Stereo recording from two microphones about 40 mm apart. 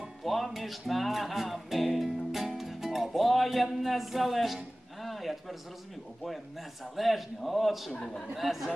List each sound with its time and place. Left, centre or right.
0.0 s music: centre
5.0 s a sound: centre
6.2 s a man's voice: centre
7.9 s a man's voice: left
8.4 s a man's voice: centre